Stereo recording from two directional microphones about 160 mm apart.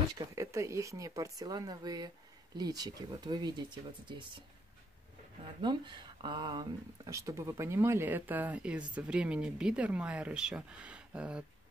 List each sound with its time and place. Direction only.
0.4 s speech: 20° right (ahead or behind)
5.6 s speech: 30° right (ahead or behind); by 11.4 s 5° right (ahead or behind)